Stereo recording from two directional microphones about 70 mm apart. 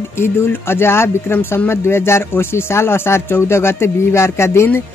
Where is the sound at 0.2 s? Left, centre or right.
Left.